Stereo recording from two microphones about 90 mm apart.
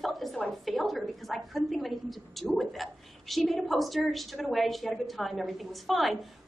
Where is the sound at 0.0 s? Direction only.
Centre (ahead or behind).